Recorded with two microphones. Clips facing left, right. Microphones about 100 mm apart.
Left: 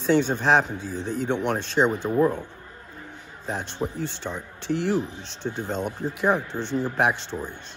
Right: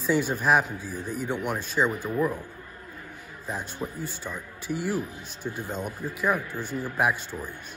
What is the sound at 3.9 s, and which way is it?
Speech, 70° left (ahead or behind).